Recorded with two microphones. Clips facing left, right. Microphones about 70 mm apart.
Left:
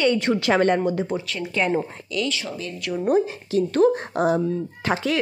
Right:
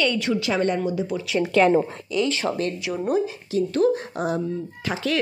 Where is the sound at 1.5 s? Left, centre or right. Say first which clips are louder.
Right 6 dB; right.